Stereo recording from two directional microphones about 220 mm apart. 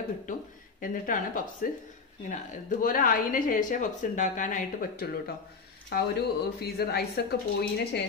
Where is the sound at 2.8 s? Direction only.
40° left (ahead or behind).